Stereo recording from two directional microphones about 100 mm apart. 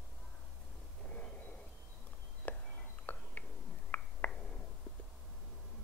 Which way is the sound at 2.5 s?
15° left (ahead or behind).